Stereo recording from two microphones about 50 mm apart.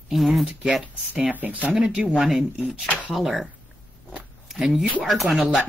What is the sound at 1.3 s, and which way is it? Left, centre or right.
Speech, right.